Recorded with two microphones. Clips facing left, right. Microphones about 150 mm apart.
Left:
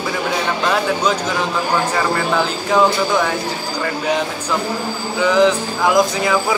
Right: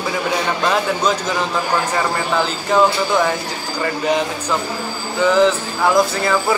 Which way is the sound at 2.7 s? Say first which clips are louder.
Even; 5° right (ahead or behind).